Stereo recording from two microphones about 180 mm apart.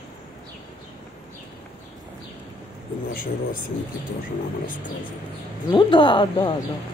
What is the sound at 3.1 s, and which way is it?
Speech, 50° left (ahead or behind).